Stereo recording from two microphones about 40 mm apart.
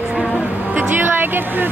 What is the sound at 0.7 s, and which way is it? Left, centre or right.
Speech, right.